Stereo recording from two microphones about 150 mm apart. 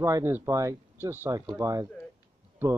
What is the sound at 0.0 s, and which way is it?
Speech, 20° right (ahead or behind).